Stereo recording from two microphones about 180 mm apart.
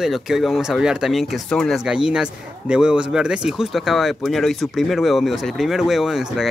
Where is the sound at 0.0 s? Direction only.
Centre (ahead or behind).